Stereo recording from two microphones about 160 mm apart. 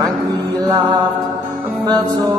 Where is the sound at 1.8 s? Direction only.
25° right (ahead or behind).